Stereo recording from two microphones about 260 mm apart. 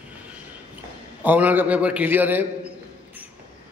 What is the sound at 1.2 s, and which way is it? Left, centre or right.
A man's voice, centre.